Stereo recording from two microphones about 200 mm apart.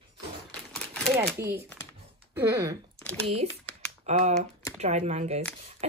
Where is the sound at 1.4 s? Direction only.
10° right (ahead or behind).